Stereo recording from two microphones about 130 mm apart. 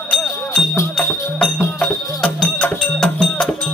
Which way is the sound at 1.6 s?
20° left (ahead or behind).